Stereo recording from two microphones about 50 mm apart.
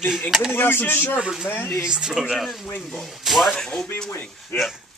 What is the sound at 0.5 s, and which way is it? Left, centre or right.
Speech, left.